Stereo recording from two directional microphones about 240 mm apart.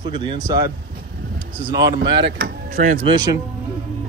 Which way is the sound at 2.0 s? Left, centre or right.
Right.